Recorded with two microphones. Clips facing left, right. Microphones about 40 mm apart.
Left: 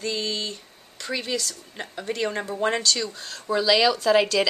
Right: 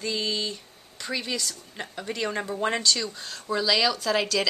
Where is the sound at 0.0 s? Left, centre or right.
Centre.